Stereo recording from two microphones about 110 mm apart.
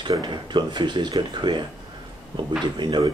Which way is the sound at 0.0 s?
40° right (ahead or behind).